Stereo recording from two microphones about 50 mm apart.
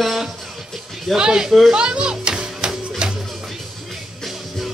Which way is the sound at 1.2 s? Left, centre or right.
Centre.